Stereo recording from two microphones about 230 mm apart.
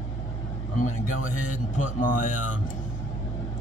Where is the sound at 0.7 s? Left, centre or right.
Left.